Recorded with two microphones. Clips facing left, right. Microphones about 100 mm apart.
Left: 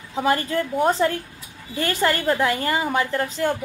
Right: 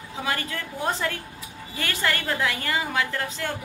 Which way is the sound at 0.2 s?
30° left (ahead or behind).